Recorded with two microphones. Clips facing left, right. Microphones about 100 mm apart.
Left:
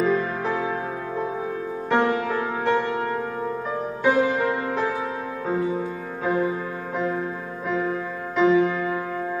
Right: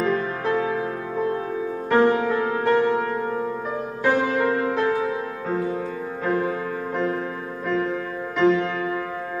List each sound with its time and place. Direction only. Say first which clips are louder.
0.0 s music: left 1 dB; 5° left (ahead or behind)
6.2 s music: left 1 dB; 5° left (ahead or behind)
8.4 s music: left 1 dB; 5° left (ahead or behind)